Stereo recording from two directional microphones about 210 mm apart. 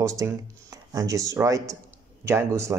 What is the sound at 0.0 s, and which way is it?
Speech, 15° right (ahead or behind).